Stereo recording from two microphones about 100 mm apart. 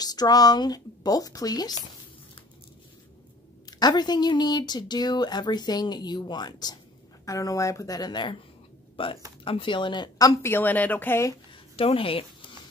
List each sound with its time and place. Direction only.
0.0 s speech: 40° left (ahead or behind)
3.8 s speech: 45° left (ahead or behind)
8.9 s speech: 65° left (ahead or behind); by 10.3 s 45° left (ahead or behind)
10.4 s speech: 20° left (ahead or behind)
11.7 s speech: 70° left (ahead or behind)